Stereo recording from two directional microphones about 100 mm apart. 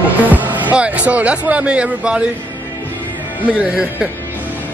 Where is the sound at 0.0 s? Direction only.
15° right (ahead or behind).